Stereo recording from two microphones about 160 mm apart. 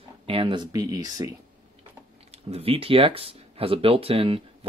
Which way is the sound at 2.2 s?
35° right (ahead or behind).